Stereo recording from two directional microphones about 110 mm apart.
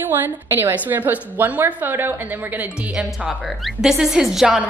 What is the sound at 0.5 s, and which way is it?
A woman's voice, 20° right (ahead or behind).